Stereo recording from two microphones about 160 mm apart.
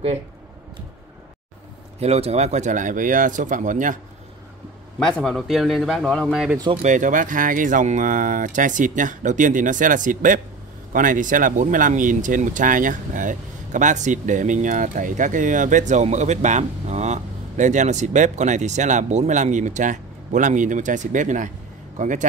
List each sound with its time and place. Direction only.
2.0 s speech: 40° right (ahead or behind)
4.9 s a man's voice: 5° left (ahead or behind)
6.8 s a man's voice: 50° right (ahead or behind)